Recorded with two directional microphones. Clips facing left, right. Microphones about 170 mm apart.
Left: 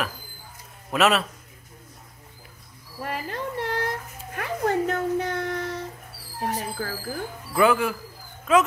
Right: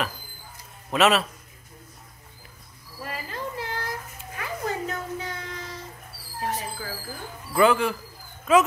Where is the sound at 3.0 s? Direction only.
65° left (ahead or behind).